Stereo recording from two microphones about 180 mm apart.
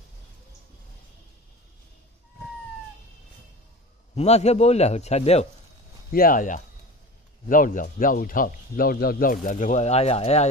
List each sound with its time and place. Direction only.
4.1 s a man's voice: 35° left (ahead or behind)
6.1 s speech: 50° left (ahead or behind)